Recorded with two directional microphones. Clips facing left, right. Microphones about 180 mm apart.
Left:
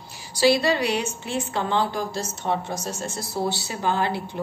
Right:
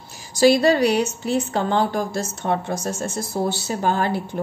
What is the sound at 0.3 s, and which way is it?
Speech, 45° right (ahead or behind).